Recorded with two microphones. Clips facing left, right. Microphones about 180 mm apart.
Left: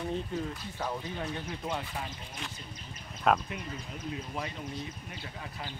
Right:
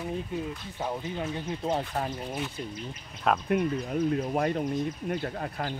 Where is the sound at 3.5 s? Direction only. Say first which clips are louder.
Right 14 dB; 55° right (ahead or behind).